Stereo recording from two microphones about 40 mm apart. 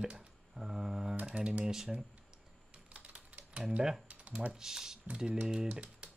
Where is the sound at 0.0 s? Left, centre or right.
Right.